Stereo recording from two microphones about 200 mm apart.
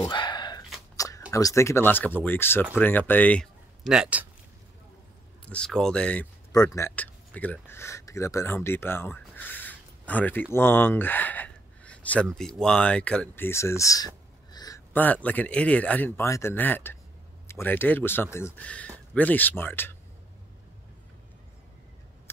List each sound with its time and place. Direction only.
0.0 s a sound: 20° left (ahead or behind)
1.3 s speech: 15° left (ahead or behind); by 4.3 s 5° right (ahead or behind)
5.4 s speech: 5° left (ahead or behind)
6.5 s speech: 15° left (ahead or behind)